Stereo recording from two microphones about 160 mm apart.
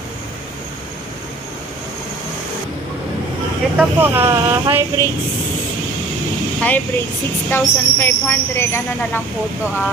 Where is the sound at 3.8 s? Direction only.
15° right (ahead or behind).